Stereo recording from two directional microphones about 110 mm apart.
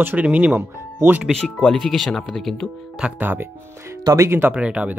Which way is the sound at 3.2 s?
20° right (ahead or behind).